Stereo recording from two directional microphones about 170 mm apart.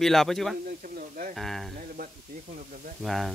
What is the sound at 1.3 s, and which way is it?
Speech, centre (ahead or behind).